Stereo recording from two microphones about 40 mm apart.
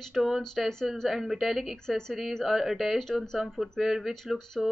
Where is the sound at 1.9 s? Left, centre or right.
Centre.